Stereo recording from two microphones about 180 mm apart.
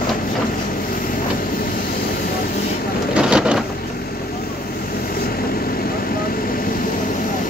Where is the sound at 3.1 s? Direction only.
5° right (ahead or behind).